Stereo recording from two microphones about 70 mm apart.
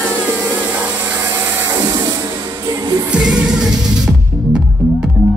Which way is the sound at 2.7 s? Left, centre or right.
Right.